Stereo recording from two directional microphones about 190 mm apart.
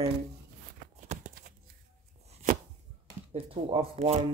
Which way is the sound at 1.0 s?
40° right (ahead or behind).